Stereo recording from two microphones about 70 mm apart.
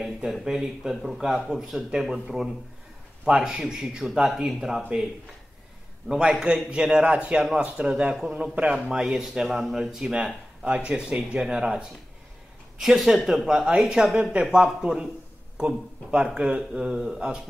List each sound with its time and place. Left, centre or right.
0.0 s speech: centre
6.0 s speech: centre
7.3 s speech: centre
8.3 s a man's voice: centre
8.9 s speech: centre